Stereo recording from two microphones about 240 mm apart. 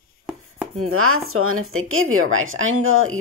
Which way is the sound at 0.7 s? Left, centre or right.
Right.